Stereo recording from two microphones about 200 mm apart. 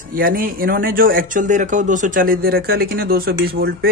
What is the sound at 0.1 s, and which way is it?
Speech, 45° right (ahead or behind).